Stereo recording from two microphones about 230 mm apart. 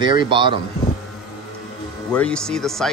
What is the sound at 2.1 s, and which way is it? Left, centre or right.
Speech, centre.